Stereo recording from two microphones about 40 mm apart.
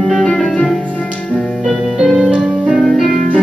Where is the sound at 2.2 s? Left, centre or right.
Right.